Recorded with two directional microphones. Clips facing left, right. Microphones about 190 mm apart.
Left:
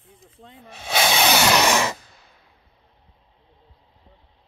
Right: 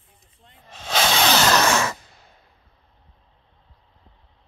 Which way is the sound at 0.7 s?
10° left (ahead or behind).